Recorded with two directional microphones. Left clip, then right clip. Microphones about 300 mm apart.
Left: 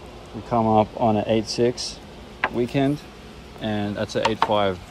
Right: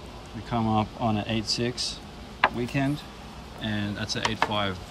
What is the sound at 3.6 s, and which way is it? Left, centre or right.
Speech, centre.